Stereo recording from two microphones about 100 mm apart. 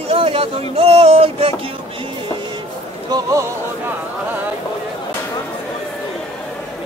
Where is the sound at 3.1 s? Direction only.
30° right (ahead or behind).